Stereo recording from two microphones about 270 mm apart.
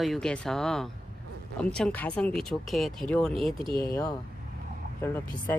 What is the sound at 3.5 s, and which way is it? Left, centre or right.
Speech, centre.